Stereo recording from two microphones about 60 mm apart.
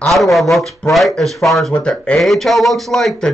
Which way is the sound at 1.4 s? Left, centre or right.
Centre.